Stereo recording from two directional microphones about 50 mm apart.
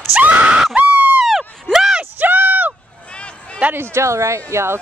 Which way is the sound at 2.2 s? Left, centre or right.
Right.